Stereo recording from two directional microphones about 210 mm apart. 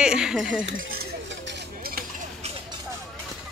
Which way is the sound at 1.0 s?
50° right (ahead or behind).